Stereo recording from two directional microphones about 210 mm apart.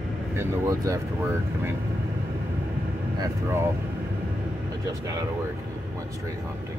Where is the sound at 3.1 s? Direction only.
15° right (ahead or behind).